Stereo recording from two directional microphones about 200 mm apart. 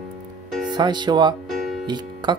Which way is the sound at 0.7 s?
20° right (ahead or behind).